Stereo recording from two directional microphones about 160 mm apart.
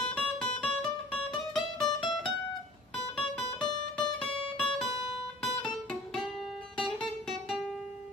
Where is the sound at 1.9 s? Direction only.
30° left (ahead or behind).